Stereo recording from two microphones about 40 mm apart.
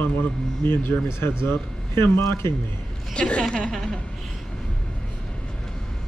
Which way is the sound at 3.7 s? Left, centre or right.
Centre.